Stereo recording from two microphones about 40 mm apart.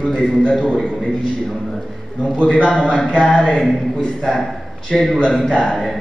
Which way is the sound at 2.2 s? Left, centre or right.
Left.